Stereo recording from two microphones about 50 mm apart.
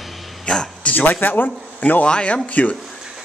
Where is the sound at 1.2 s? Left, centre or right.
Left.